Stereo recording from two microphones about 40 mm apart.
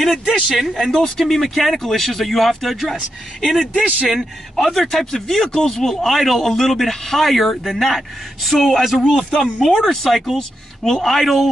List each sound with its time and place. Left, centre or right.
0.0 s speech: centre
3.7 s speech: right
4.6 s speech: centre